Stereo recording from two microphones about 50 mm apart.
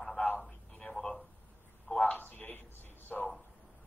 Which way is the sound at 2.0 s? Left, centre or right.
Left.